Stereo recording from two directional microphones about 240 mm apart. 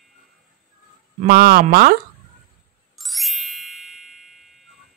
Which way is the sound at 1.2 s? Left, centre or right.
Right.